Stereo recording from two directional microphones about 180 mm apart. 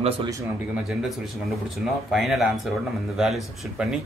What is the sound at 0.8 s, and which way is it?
Speech, centre (ahead or behind).